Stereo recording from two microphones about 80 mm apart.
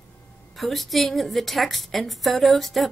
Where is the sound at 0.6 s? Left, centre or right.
Centre.